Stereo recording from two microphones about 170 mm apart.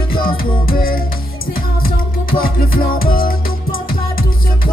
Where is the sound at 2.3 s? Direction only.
60° left (ahead or behind).